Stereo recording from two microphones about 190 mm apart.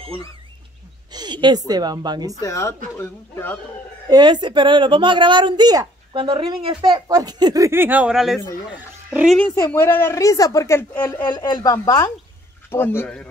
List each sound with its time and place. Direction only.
0.0 s speech: 30° right (ahead or behind)
2.4 s a woman's voice: 15° left (ahead or behind)
4.1 s speech: 25° right (ahead or behind); by 9.4 s 5° right (ahead or behind)
9.7 s a woman's voice: 10° left (ahead or behind)
11.2 s a woman's voice: 25° left (ahead or behind); by 13.3 s 10° left (ahead or behind)